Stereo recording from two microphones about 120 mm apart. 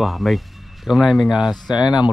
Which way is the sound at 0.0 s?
Centre (ahead or behind).